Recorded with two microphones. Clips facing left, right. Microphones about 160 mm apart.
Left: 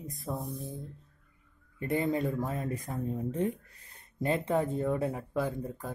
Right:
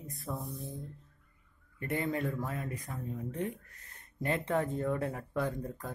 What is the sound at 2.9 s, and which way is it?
Speech, 30° left (ahead or behind).